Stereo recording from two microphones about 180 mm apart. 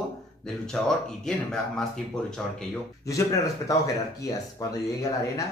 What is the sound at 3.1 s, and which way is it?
Speech, 20° left (ahead or behind).